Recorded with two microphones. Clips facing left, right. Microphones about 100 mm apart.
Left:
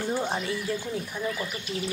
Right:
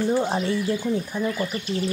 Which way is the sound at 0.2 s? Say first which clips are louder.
Right 5 dB; 30° right (ahead or behind).